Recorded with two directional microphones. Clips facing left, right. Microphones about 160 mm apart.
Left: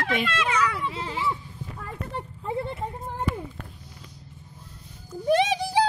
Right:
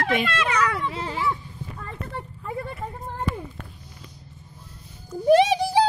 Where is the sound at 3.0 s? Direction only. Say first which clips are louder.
Right 1 dB; 5° left (ahead or behind).